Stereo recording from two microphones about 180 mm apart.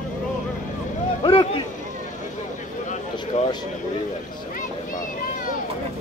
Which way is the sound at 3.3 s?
40° left (ahead or behind).